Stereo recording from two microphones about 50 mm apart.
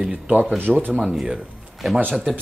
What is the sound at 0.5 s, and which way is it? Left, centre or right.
Speech, right.